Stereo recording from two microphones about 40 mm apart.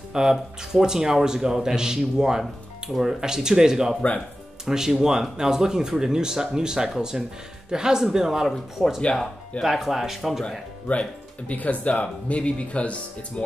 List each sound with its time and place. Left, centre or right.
0.1 s speech: centre
2.9 s speech: centre
3.2 s speech: centre
10.9 s speech: left